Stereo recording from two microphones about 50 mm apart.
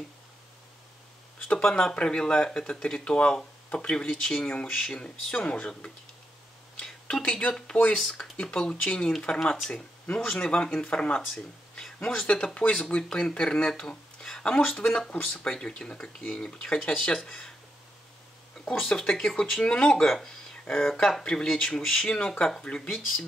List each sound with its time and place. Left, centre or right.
1.5 s speech: centre
7.2 s speech: left
7.9 s speech: centre
18.7 s speech: centre
21.2 s speech: centre
22.9 s speech: centre